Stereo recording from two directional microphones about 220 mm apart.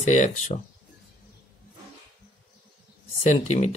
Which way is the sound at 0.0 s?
30° left (ahead or behind).